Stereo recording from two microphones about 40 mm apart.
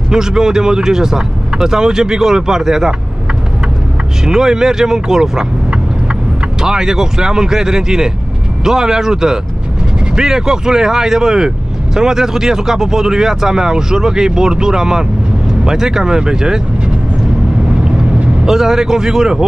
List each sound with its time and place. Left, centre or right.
0.1 s speech: centre
4.2 s speech: centre
6.6 s speech: centre
17.8 s vehicle: centre